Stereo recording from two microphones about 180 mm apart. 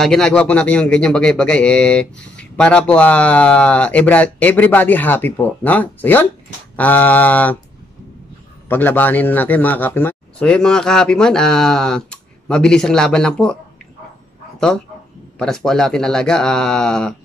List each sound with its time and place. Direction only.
0.0 s speech: 5° left (ahead or behind)
8.6 s a man's voice: 10° left (ahead or behind)
15.3 s a man's voice: 5° left (ahead or behind)